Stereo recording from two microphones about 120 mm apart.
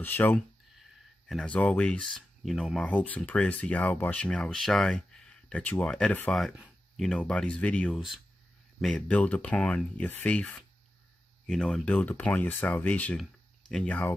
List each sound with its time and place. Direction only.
0.0 s speech: 15° left (ahead or behind)